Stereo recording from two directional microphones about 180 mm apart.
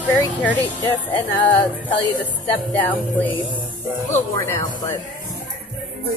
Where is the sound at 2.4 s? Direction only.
10° left (ahead or behind).